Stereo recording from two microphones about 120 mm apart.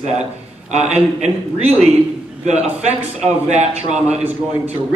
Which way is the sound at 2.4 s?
70° right (ahead or behind).